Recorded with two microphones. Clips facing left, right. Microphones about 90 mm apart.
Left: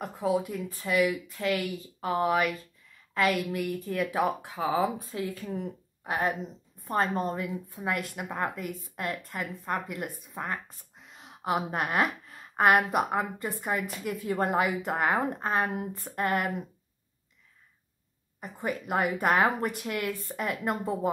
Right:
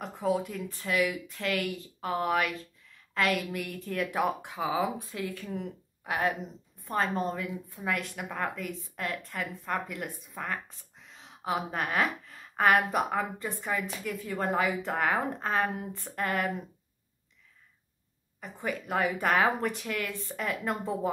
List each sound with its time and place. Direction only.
0.0 s speech: 5° left (ahead or behind)
5.1 s speech: 35° left (ahead or behind)
7.2 s a woman's voice: 10° left (ahead or behind)
11.0 s a sound: 5° left (ahead or behind)
12.7 s a woman's voice: 10° left (ahead or behind)
18.4 s a woman's voice: 10° left (ahead or behind)